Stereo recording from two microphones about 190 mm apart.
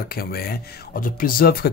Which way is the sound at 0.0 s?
50° left (ahead or behind).